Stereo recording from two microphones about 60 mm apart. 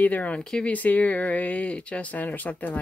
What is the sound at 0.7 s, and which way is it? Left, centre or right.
Speech, left.